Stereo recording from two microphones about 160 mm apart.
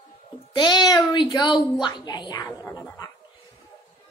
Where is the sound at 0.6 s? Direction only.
25° left (ahead or behind).